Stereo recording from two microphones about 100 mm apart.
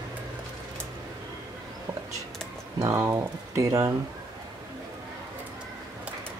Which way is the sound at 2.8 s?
25° right (ahead or behind).